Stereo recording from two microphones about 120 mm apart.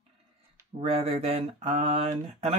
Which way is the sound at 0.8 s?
50° right (ahead or behind).